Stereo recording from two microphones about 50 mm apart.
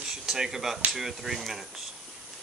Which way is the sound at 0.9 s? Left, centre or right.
Centre.